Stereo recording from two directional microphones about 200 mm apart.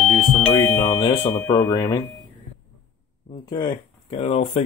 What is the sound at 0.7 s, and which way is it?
Speech, 25° left (ahead or behind).